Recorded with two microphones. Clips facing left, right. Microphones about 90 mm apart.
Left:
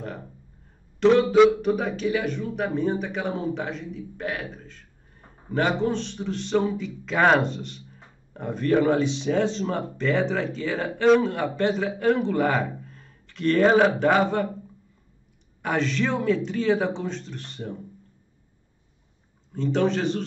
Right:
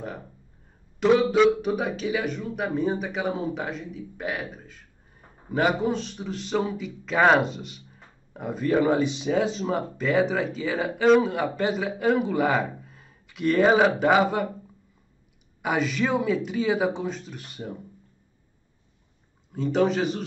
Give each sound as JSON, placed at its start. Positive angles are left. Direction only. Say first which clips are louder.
{"t": 0.9, "sound": "a man's voice", "louder": "left 3 dB", "side_deg": -5}
{"t": 15.6, "sound": "speech", "louder": "even", "side_deg": -10}
{"t": 19.5, "sound": "a man's voice", "louder": "even", "side_deg": -5}